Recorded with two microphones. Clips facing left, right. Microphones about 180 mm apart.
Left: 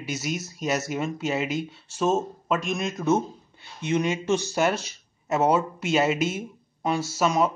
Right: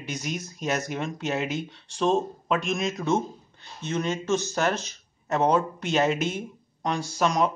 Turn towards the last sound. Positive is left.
turn(degrees=5)  # may be behind; listen again after turning